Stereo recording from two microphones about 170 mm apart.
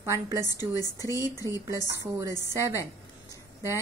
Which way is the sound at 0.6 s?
20° left (ahead or behind).